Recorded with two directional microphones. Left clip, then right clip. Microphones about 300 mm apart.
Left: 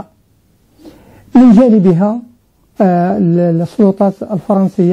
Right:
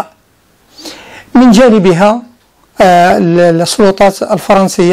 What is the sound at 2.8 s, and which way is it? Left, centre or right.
Speech, centre.